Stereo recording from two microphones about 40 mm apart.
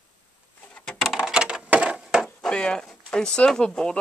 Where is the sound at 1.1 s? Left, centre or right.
Centre.